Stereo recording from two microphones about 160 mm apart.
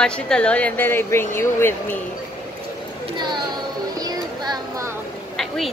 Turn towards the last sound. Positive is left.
turn(degrees=0)  # may be behind; listen again after turning